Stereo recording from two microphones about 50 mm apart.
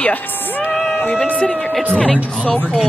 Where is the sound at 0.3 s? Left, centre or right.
Left.